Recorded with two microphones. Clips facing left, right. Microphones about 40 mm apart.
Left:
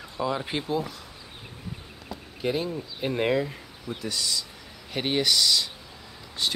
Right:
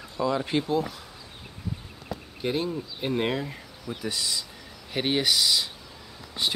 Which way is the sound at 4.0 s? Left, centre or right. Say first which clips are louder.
Even; centre.